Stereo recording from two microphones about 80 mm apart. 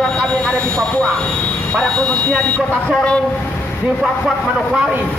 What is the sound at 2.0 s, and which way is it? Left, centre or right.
Speech, centre.